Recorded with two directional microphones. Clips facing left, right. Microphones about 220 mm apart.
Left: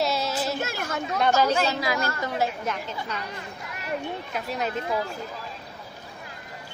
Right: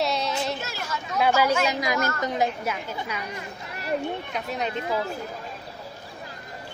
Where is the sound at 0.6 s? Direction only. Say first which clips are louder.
Left 4 dB; 55° left (ahead or behind).